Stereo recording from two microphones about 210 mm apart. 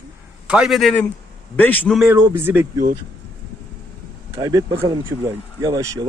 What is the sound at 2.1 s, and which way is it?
Speech, 10° right (ahead or behind).